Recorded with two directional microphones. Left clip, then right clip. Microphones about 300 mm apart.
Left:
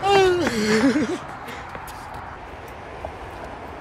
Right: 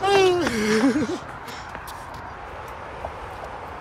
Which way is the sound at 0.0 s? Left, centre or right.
Centre.